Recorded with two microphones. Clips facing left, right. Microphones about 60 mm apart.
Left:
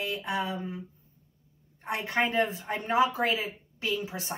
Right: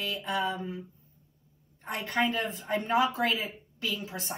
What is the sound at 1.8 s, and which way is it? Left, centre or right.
Speech, centre.